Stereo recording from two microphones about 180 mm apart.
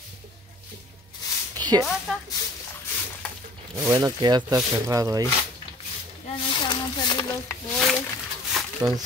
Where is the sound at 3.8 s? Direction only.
20° right (ahead or behind).